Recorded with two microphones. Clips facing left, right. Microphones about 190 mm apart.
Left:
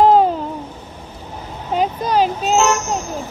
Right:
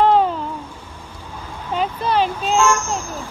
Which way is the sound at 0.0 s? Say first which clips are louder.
Left 3 dB; 40° left (ahead or behind).